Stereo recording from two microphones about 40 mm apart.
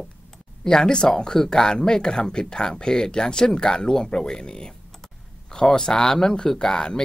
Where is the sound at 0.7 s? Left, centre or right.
Centre.